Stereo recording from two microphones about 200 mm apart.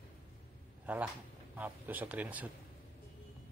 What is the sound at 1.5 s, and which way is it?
Speech, 10° right (ahead or behind).